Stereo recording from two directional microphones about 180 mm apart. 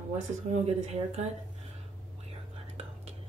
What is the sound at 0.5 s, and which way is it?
Speech, 35° right (ahead or behind).